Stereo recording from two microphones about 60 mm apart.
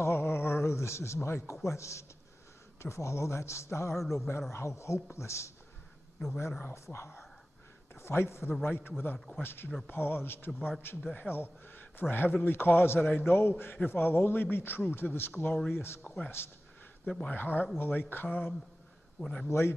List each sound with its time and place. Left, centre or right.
0.0 s a sound: left
1.5 s a man's voice: left
4.0 s speech: centre
4.5 s speech: left
6.7 s a man's voice: left
17.2 s a man's voice: left
19.1 s a man's voice: centre
19.4 s speech: left